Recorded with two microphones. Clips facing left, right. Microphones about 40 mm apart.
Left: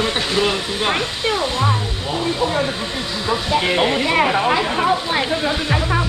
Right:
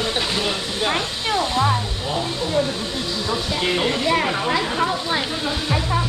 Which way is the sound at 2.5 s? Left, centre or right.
Left.